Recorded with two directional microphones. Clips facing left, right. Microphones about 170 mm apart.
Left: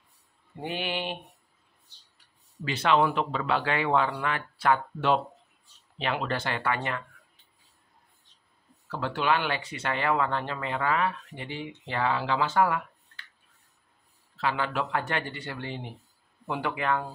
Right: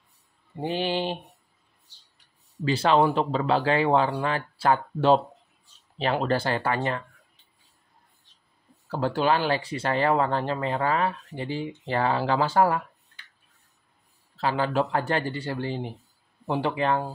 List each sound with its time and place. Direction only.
0.6 s speech: 30° right (ahead or behind)
2.6 s speech: 35° right (ahead or behind)
8.8 s speech: 35° right (ahead or behind)
14.3 s speech: 35° right (ahead or behind)